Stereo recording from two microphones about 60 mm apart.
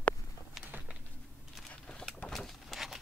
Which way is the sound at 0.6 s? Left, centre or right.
Centre.